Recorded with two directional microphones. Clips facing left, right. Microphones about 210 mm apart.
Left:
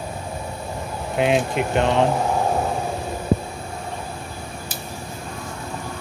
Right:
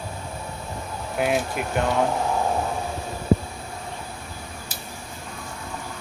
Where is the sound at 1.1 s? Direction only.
20° left (ahead or behind).